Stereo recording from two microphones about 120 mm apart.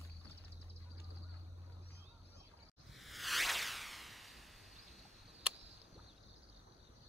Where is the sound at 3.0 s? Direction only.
Centre (ahead or behind).